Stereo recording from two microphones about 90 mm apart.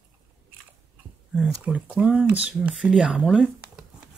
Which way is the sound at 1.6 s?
15° right (ahead or behind).